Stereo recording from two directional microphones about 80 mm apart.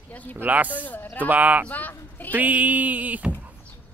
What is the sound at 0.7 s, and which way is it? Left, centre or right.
Speech, left.